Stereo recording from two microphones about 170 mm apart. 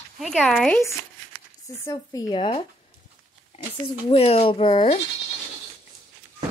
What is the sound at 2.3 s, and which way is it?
Speech, 35° left (ahead or behind).